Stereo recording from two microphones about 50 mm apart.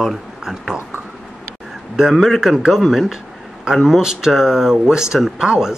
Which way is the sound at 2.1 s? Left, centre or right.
Centre.